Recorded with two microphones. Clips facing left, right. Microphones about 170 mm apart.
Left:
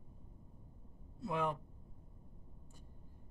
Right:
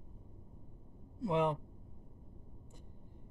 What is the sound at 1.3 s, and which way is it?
Speech, 20° right (ahead or behind).